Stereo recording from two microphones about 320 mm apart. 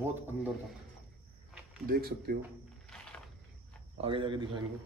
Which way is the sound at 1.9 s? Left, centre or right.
Right.